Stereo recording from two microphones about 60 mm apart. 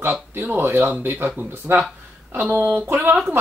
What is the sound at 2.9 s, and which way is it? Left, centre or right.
Speech, right.